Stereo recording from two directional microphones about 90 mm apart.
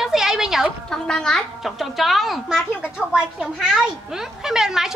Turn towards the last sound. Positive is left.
turn(degrees=-5)  # may be behind; listen again after turning